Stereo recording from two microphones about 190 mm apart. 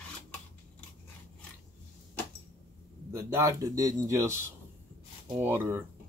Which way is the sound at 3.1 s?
15° right (ahead or behind).